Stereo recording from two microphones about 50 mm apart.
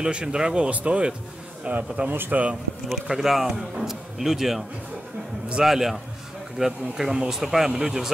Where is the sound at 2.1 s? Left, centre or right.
Right.